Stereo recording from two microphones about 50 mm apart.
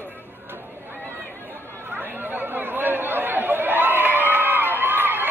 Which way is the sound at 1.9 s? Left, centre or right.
Right.